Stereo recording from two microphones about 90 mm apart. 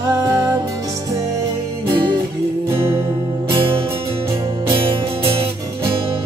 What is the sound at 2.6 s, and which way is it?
Music, 30° right (ahead or behind).